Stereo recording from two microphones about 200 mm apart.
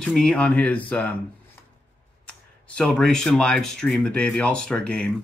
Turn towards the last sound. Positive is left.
turn(degrees=5)  # may be behind; listen again after turning